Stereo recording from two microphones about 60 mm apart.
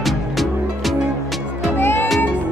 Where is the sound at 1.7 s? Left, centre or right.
Left.